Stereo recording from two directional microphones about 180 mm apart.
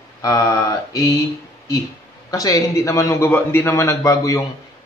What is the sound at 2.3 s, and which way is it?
A man's voice, 20° left (ahead or behind).